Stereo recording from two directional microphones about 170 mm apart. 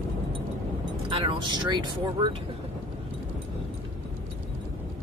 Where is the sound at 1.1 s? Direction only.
30° right (ahead or behind).